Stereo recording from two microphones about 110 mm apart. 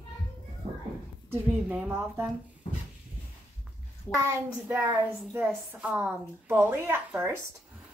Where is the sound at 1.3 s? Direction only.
15° right (ahead or behind).